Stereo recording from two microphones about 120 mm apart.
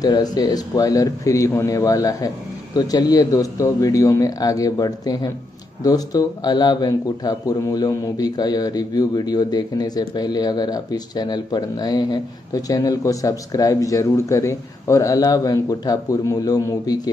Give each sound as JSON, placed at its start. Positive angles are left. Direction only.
{"t": 0.0, "sound": "speech", "side_deg": 35}